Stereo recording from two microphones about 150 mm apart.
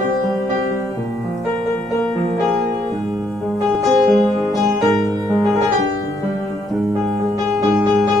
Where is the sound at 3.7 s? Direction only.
Centre (ahead or behind).